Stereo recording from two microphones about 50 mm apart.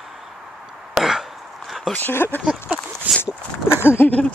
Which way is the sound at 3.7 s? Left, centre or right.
Left.